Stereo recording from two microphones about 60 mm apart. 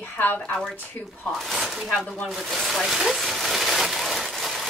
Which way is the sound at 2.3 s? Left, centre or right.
Centre.